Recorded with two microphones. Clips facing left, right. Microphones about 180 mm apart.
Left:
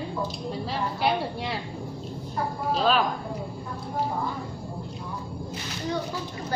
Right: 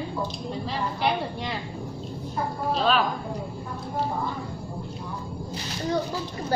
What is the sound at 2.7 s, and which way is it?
Speech, centre (ahead or behind).